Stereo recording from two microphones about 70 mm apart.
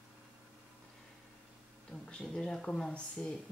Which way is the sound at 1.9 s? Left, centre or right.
Centre.